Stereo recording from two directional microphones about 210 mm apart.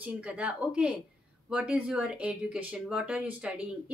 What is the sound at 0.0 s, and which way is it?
Speech, 5° right (ahead or behind).